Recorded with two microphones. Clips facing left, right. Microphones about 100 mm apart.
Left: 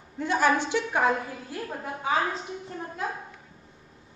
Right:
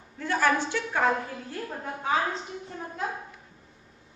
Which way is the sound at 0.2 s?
20° left (ahead or behind).